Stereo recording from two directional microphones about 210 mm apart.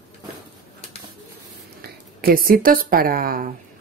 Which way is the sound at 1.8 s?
45° right (ahead or behind).